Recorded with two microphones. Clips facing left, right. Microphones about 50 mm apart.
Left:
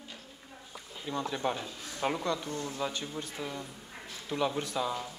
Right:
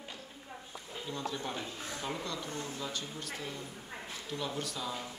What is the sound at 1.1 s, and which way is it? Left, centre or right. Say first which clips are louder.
A man's voice: left 6 dB; left.